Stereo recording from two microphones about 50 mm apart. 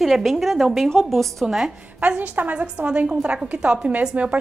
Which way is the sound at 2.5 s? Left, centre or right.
Right.